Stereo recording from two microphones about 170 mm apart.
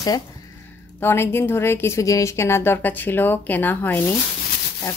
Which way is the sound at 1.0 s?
15° left (ahead or behind).